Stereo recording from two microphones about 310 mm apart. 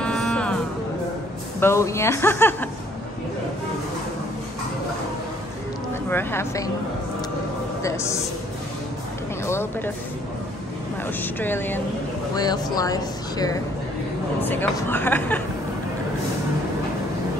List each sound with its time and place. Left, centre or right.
0.0 s music: centre
1.6 s a woman's voice: centre
6.0 s a woman's voice: centre
7.8 s a woman's voice: centre
11.1 s a woman's voice: centre